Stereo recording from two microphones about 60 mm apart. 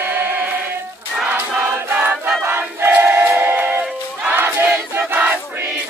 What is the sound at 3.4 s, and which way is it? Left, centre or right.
Music, right.